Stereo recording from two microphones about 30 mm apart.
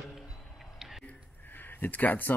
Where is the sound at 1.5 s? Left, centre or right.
Left.